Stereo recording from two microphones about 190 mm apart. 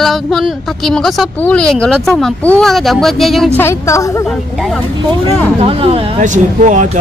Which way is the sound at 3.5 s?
15° left (ahead or behind).